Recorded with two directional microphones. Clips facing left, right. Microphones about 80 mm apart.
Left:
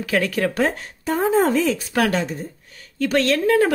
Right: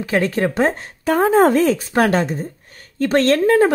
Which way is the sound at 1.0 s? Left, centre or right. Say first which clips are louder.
Right 5 dB; right.